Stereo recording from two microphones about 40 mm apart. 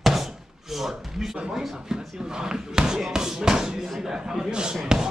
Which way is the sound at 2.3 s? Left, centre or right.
Centre.